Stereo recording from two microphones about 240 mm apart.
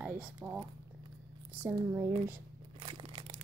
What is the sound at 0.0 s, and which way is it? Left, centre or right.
Speech, centre.